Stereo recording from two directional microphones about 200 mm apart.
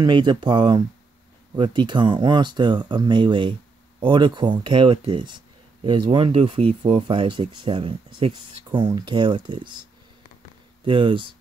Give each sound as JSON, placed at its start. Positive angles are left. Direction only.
{"t": 0.0, "sound": "speech", "side_deg": -20}
{"t": 10.9, "sound": "speech", "side_deg": -25}